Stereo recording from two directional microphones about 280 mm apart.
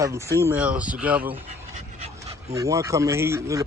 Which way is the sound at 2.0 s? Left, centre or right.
Right.